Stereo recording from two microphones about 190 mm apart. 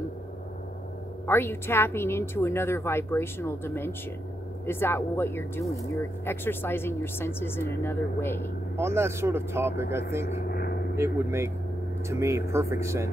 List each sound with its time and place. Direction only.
1.2 s speech: 10° left (ahead or behind)
8.7 s speech: 15° right (ahead or behind)
10.5 s a sound: 55° left (ahead or behind)
11.0 s speech: 15° right (ahead or behind)